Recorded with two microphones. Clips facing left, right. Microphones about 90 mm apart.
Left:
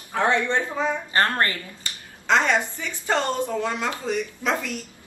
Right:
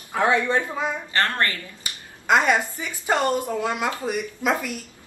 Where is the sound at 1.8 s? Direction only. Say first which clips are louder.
Even; 10° right (ahead or behind).